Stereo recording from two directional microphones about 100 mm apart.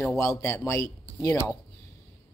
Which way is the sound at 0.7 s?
35° left (ahead or behind).